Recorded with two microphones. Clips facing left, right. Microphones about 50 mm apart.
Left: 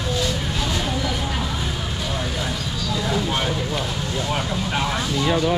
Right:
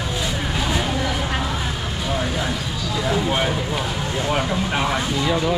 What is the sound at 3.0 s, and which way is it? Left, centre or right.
Speech, centre.